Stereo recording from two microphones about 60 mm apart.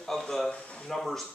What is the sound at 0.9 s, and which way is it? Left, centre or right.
Speech, centre.